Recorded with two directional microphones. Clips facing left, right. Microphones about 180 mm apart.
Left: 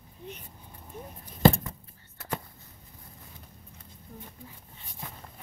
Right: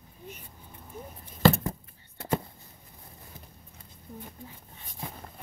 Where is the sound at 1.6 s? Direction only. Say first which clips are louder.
Right 7 dB; 30° right (ahead or behind).